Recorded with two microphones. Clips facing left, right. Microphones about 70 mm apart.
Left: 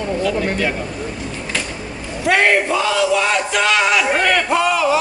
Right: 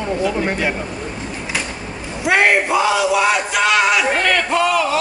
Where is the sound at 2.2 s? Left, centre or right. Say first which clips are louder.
Even; centre.